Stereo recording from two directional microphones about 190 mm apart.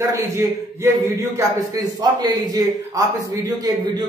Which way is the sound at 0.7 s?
15° right (ahead or behind).